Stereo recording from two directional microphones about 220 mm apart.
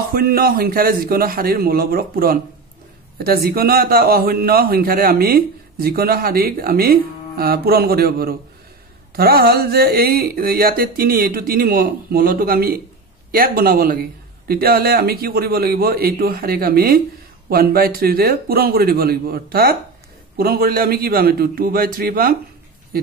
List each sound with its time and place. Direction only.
0.1 s a man's voice: 40° right (ahead or behind)